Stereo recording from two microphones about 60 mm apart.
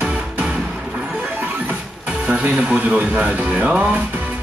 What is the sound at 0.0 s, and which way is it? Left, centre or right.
Music, centre.